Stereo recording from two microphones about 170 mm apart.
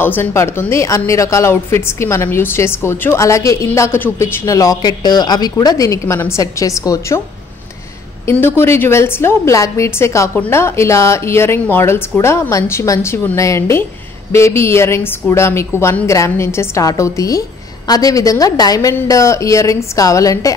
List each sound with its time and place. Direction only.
0.0 s speech: 15° left (ahead or behind)
8.5 s speech: 15° left (ahead or behind)